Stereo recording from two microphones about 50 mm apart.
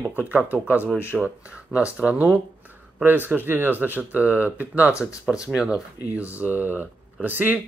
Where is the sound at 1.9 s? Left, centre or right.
Right.